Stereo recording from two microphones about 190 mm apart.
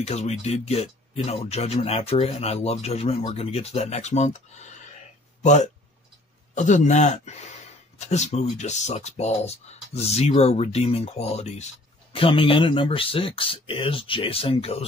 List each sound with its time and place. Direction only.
0.0 s speech: 35° left (ahead or behind)